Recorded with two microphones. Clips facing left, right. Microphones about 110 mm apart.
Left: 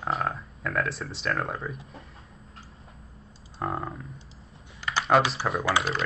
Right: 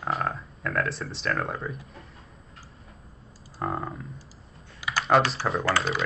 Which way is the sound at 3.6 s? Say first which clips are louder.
Right 1 dB; centre (ahead or behind).